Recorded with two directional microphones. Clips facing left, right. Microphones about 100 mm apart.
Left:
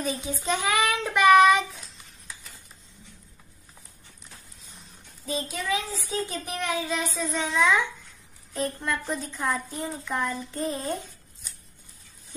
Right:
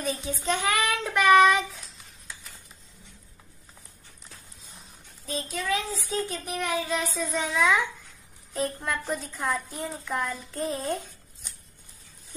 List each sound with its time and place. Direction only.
0.0 s child singing: 5° left (ahead or behind)
5.2 s a child's voice: 5° left (ahead or behind)